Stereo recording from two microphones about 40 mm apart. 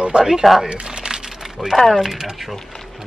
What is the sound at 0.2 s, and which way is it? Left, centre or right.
Speech, centre.